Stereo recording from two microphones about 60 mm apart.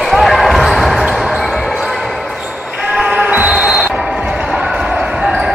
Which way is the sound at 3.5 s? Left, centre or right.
Centre.